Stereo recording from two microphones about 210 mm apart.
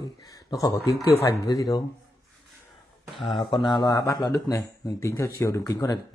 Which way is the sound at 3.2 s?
25° left (ahead or behind).